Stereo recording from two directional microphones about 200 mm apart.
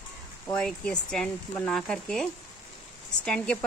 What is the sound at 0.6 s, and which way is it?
Speech, 5° left (ahead or behind).